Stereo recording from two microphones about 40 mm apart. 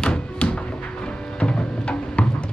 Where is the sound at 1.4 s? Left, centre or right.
Left.